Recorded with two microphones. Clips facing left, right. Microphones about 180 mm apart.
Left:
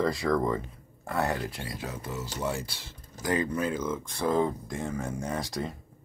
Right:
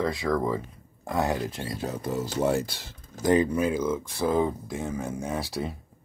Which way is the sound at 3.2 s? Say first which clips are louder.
Right 6 dB; 20° right (ahead or behind).